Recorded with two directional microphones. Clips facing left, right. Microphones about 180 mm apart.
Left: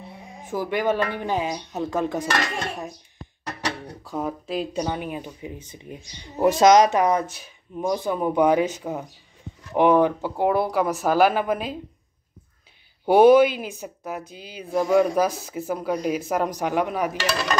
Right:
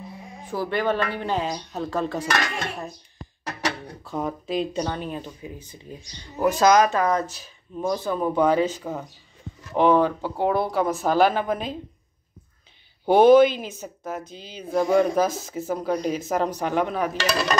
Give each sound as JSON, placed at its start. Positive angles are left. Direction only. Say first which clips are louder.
{"t": 0.5, "sound": "speech", "louder": "left 1 dB", "side_deg": 15}
{"t": 3.8, "sound": "speech", "louder": "even", "side_deg": 10}
{"t": 13.0, "sound": "speech", "louder": "even", "side_deg": 10}